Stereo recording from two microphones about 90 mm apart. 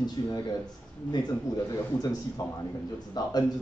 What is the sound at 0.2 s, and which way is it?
Speech, 50° left (ahead or behind).